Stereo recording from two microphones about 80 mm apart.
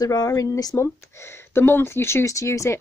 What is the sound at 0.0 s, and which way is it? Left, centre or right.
Speech, left.